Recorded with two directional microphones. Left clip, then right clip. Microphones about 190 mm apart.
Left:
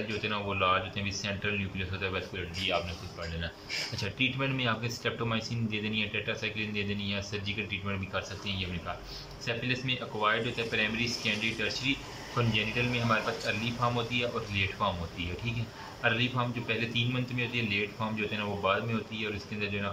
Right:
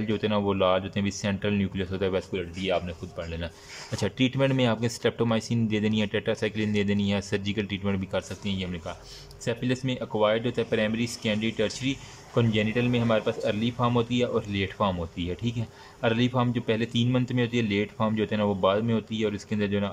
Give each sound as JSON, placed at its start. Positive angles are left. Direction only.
{"t": 0.2, "sound": "speech", "side_deg": -40}
{"t": 3.9, "sound": "speech", "side_deg": -40}